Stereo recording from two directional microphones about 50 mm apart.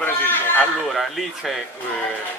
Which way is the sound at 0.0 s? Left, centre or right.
Left.